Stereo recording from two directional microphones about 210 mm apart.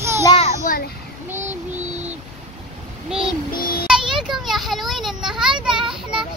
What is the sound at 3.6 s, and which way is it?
Child singing, 45° left (ahead or behind).